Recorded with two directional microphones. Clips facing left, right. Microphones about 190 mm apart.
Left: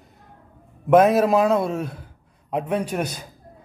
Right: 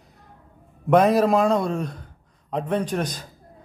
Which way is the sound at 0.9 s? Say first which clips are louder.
Left 2 dB; centre (ahead or behind).